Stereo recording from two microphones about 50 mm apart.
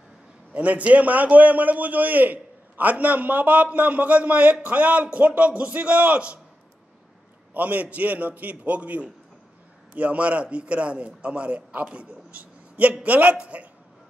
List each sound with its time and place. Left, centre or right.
0.6 s a man's voice: right
7.5 s a man's voice: right